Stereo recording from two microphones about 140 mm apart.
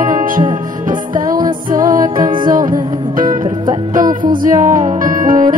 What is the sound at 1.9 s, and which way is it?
Music, 75° right (ahead or behind).